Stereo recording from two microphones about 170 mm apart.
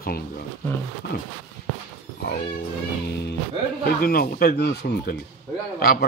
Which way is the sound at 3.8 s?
60° left (ahead or behind).